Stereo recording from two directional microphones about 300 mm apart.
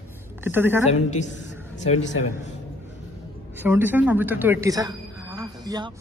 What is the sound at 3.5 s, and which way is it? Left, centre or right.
A woman's voice, centre.